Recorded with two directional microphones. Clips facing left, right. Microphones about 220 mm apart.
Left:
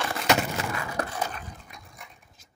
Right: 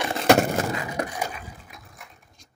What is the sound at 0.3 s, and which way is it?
Skateboard, 50° right (ahead or behind).